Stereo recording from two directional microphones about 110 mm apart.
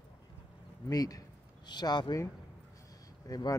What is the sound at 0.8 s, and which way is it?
Speech, 35° left (ahead or behind).